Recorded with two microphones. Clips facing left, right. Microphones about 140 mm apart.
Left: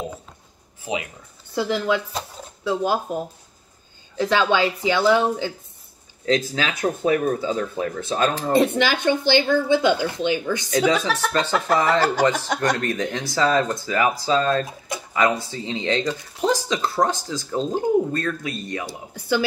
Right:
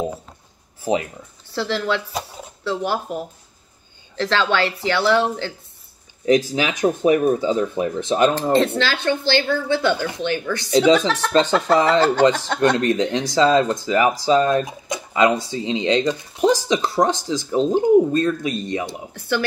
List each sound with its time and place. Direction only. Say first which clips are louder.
0.9 s speech: right 7 dB; 40° right (ahead or behind)
1.5 s speech: left 1 dB; 15° left (ahead or behind)
6.2 s speech: right 4 dB; 20° right (ahead or behind)
8.5 s speech: even; 15° left (ahead or behind)
12.7 s speech: right 6 dB; 20° right (ahead or behind)
19.1 s speech: left 1 dB; 5° left (ahead or behind)